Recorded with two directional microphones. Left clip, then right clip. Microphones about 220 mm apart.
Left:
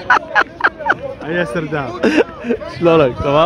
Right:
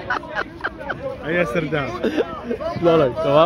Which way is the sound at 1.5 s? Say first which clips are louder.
Left 2 dB; 5° left (ahead or behind).